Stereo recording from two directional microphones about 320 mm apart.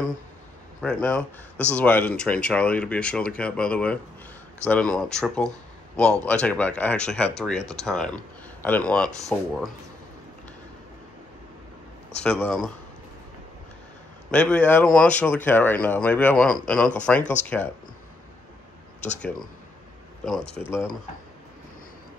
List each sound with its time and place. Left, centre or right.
0.7 s speech: centre
12.2 s speech: centre
14.3 s speech: centre